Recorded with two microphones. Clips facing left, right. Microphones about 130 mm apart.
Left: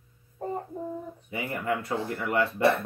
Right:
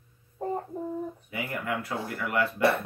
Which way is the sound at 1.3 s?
30° left (ahead or behind).